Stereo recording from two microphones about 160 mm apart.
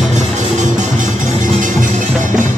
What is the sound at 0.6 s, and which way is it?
Music, 50° right (ahead or behind).